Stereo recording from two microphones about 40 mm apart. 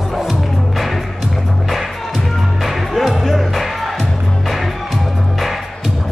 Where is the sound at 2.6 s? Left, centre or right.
Centre.